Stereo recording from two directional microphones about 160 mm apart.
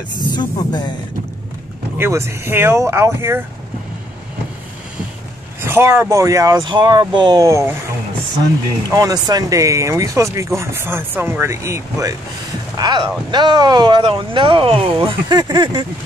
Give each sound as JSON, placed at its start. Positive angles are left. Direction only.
{"t": 0.3, "sound": "speech", "side_deg": 30}
{"t": 2.0, "sound": "speech", "side_deg": -15}
{"t": 5.6, "sound": "speech", "side_deg": -15}
{"t": 8.8, "sound": "speech", "side_deg": -25}